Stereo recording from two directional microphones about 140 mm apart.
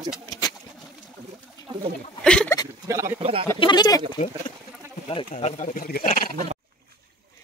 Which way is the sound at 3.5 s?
35° left (ahead or behind).